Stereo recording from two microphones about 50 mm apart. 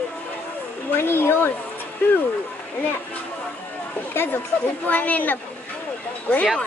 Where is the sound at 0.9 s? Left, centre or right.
Left.